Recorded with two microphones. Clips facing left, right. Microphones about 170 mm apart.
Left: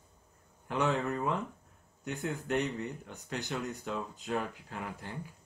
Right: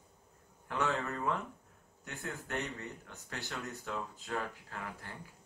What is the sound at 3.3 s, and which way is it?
Speech, 20° left (ahead or behind).